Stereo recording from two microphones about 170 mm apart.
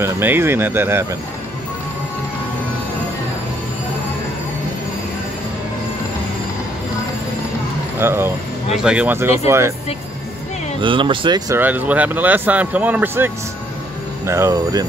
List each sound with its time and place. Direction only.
0.0 s speech: 15° right (ahead or behind)
8.0 s speech: 15° right (ahead or behind)
10.8 s speech: 30° right (ahead or behind)